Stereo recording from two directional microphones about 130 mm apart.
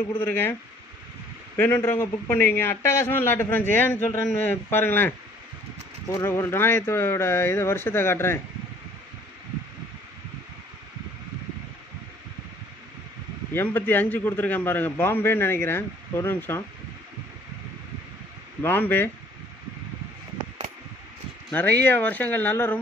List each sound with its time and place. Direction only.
0.2 s a man's voice: 15° left (ahead or behind)
1.6 s a man's voice: 15° left (ahead or behind)
6.2 s a man's voice: 20° left (ahead or behind)
13.5 s a man's voice: 15° left (ahead or behind)
18.6 s a man's voice: 15° left (ahead or behind)
21.5 s a man's voice: 15° left (ahead or behind)